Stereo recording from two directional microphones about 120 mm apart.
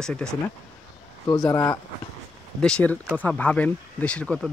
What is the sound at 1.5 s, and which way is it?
Speech, 30° left (ahead or behind).